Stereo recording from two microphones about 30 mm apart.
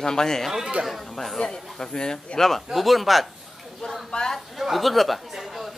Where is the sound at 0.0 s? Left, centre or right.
Left.